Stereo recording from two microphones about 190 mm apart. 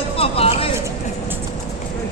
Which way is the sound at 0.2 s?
30° left (ahead or behind).